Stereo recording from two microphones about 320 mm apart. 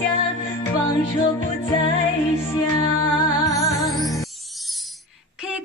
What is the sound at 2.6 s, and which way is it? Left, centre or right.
Music, left.